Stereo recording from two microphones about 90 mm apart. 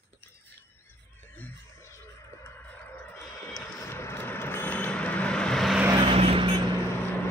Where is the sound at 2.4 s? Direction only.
20° left (ahead or behind).